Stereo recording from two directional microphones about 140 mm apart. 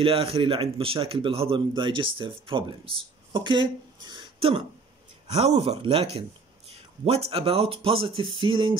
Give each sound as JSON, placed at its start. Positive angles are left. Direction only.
{"t": 0.0, "sound": "speech", "side_deg": -45}